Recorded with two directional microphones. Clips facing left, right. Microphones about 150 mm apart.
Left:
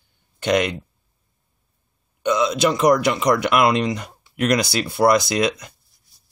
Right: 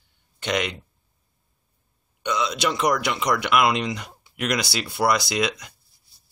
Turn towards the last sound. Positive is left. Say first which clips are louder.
# left 4 dB
turn(degrees=45)  # may be behind; listen again after turning